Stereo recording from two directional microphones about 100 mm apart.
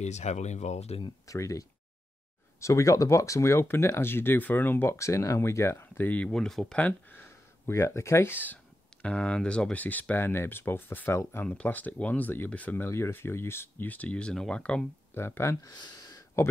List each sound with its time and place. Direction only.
0.3 s speech: 90° left
1.2 s speech: 35° left (ahead or behind)
6.2 s speech: 5° left (ahead or behind)
6.8 s speech: 20° left (ahead or behind)
11.4 s speech: 15° left (ahead or behind)
15.1 s speech: 25° left (ahead or behind)
16.1 s a sound: 30° left (ahead or behind)